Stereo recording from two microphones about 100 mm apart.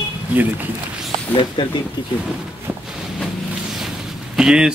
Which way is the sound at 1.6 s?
55° left (ahead or behind).